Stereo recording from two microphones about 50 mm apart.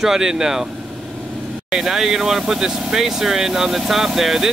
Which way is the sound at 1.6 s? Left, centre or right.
Centre.